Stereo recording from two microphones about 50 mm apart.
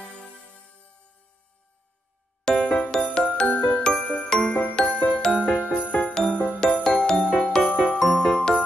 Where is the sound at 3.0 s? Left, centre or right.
Centre.